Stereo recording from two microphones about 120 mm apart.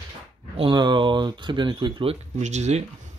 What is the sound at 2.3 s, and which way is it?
Speech, 75° right (ahead or behind).